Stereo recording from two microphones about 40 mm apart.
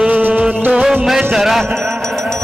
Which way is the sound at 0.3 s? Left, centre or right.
Right.